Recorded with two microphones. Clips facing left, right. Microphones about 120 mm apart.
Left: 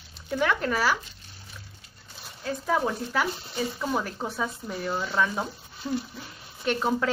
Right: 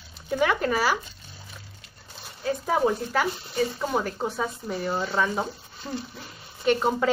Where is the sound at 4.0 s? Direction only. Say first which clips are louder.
Right 3 dB; 5° right (ahead or behind).